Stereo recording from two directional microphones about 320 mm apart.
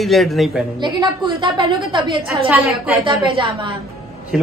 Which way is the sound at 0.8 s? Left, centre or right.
Centre.